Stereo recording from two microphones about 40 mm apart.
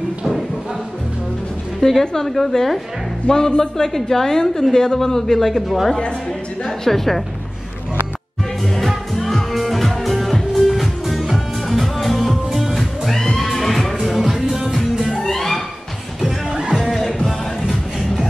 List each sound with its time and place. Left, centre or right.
1.8 s a woman's voice: centre
8.7 s music: centre
15.2 s a sound: centre
16.5 s music: centre
16.8 s music: centre